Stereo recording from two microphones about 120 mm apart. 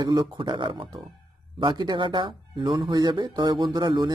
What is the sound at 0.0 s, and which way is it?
A man's voice, 40° right (ahead or behind).